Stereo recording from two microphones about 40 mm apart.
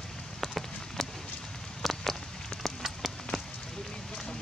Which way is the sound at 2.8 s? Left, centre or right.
Centre.